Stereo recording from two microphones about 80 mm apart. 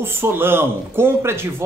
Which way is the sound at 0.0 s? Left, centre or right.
Right.